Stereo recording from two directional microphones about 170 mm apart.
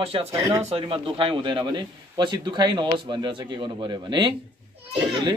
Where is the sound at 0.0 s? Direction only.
35° right (ahead or behind).